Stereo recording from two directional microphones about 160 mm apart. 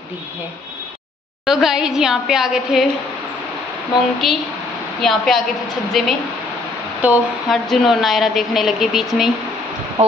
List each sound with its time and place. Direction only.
1.4 s a woman's voice: 5° right (ahead or behind)
4.2 s a woman's voice: centre (ahead or behind)
10.0 s speech: 45° right (ahead or behind)